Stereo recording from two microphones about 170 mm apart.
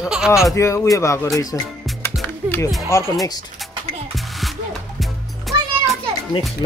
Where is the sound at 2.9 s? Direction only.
15° left (ahead or behind).